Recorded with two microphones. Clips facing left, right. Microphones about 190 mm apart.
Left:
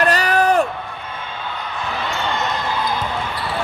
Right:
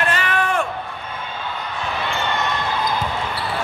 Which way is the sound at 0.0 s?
40° left (ahead or behind).